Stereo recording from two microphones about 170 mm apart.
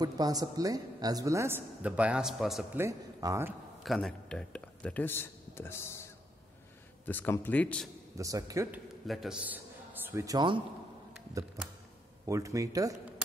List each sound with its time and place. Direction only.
0.0 s a woman's voice: 20° right (ahead or behind); by 2.6 s centre (ahead or behind)
2.7 s speech: 15° right (ahead or behind)
3.8 s speech: centre (ahead or behind)
8.2 s speech: 20° right (ahead or behind)
8.7 s a man's voice: centre (ahead or behind)
10.0 s speech: 20° right (ahead or behind)
12.3 s speech: 20° right (ahead or behind)